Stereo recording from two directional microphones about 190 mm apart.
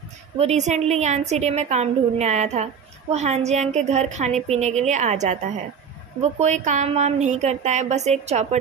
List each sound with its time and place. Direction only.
0.4 s a woman's voice: 35° right (ahead or behind)